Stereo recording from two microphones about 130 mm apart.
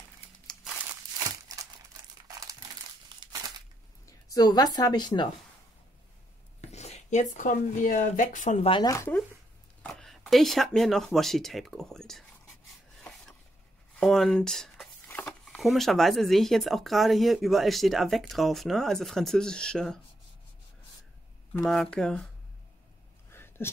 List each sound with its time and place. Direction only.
3.2 s crumpling: 30° right (ahead or behind)
4.0 s speech: 30° left (ahead or behind)
6.6 s speech: 60° left (ahead or behind); by 8.5 s 75° left (ahead or behind)
8.8 s speech: 25° left (ahead or behind)
9.9 s speech: 5° left (ahead or behind)
13.9 s speech: 5° left (ahead or behind)
15.0 s a sound: 15° left (ahead or behind)
15.4 s speech: centre (ahead or behind)
21.6 s speech: 5° left (ahead or behind)
23.3 s a sound: 20° left (ahead or behind)